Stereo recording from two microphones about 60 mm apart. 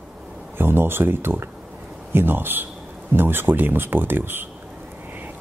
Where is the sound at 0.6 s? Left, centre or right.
Right.